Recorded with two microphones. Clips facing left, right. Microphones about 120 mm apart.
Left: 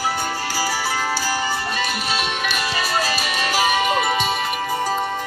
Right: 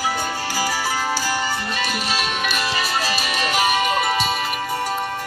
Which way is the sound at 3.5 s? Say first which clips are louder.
Left 1 dB; 20° left (ahead or behind).